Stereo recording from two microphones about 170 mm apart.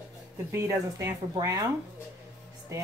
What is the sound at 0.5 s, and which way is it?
Speech, 15° right (ahead or behind).